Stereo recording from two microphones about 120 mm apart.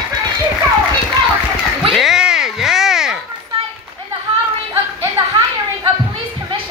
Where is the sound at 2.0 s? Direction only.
5° right (ahead or behind).